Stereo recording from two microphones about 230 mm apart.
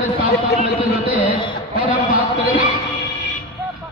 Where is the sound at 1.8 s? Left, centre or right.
Centre.